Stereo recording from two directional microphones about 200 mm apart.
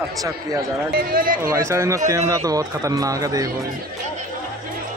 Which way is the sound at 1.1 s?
45° right (ahead or behind).